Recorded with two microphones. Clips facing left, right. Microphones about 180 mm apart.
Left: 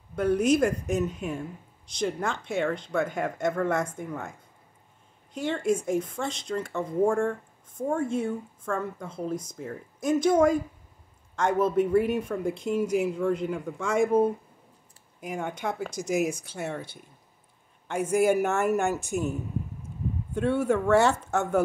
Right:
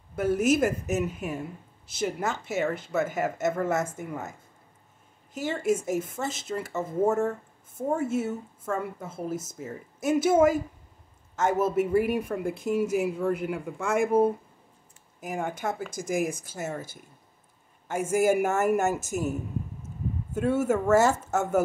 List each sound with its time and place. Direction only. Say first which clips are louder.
0.1 s speech: left 1 dB; 5° right (ahead or behind)
15.9 s speech: left 3 dB; 55° right (ahead or behind)
16.4 s speech: even; 5° right (ahead or behind)
17.8 s speech: even; 5° right (ahead or behind)
20.3 s speech: even; 5° right (ahead or behind)